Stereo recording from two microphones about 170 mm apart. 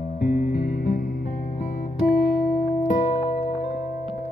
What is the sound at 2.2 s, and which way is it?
Music, 60° left (ahead or behind).